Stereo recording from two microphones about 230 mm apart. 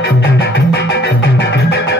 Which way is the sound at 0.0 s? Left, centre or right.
Left.